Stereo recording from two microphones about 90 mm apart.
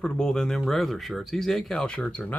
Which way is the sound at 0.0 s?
10° left (ahead or behind).